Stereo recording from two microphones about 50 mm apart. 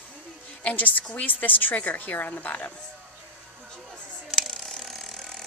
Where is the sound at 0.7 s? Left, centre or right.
Left.